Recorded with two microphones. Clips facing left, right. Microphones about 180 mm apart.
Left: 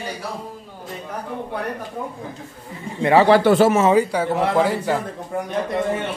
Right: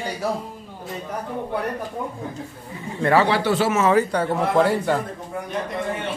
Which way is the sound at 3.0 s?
20° left (ahead or behind).